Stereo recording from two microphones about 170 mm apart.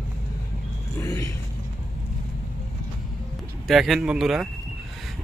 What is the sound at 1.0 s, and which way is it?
Speech, 15° left (ahead or behind).